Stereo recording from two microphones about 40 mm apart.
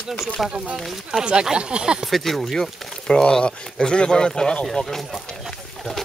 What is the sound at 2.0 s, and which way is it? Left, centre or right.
Speech, centre.